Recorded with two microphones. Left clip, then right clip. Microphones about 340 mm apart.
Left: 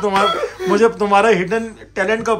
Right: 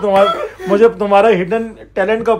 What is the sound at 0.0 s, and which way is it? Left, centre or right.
A man's voice, centre.